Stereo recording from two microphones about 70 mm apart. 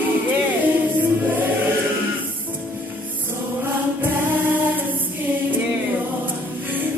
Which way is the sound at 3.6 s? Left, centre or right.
Right.